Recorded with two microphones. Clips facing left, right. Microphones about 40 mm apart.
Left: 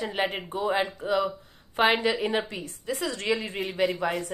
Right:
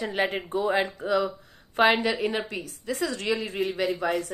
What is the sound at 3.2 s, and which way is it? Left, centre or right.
Speech, left.